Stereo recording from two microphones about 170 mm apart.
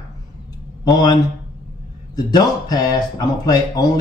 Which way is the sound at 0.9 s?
25° left (ahead or behind).